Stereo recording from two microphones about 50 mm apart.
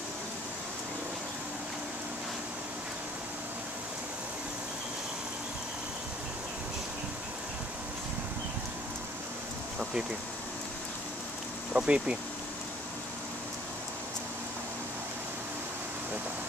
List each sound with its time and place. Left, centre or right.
11.7 s speech: right